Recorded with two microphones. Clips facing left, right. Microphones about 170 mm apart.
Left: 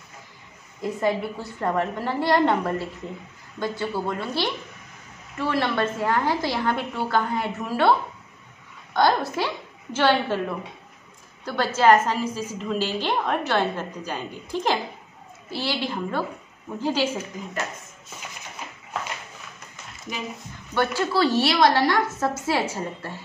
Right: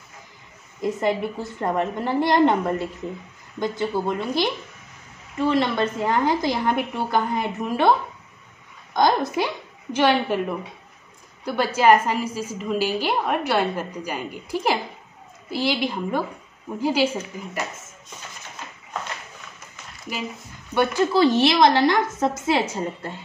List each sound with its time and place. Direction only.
0.8 s a woman's voice: 20° right (ahead or behind)
8.9 s a woman's voice: 15° right (ahead or behind)
11.4 s a woman's voice: 10° right (ahead or behind)
20.7 s a woman's voice: 15° right (ahead or behind)